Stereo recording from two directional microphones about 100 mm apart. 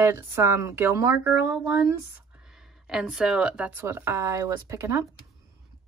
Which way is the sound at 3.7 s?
20° right (ahead or behind).